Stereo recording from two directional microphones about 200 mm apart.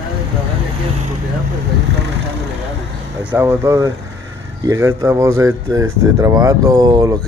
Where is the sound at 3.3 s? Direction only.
15° right (ahead or behind).